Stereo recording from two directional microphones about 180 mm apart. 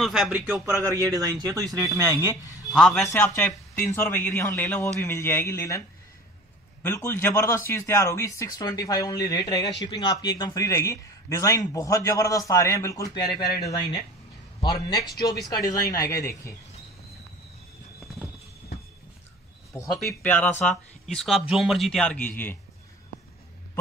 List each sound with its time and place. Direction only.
0.0 s a man's voice: centre (ahead or behind); by 2.3 s 15° right (ahead or behind)
2.7 s speech: centre (ahead or behind)
3.3 s speech: 10° left (ahead or behind)
6.8 s a man's voice: 10° left (ahead or behind)
15.3 s speech: centre (ahead or behind)
15.6 s speech: 20° left (ahead or behind)
20.1 s speech: 10° left (ahead or behind)